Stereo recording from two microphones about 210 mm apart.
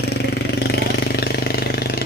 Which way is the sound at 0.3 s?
50° left (ahead or behind).